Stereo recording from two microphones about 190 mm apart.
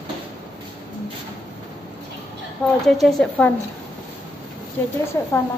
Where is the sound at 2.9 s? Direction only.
Centre (ahead or behind).